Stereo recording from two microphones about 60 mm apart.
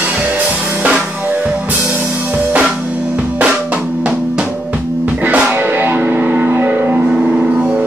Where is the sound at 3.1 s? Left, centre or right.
Right.